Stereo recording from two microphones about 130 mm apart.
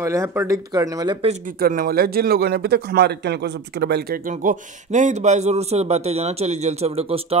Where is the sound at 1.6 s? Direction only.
90° right.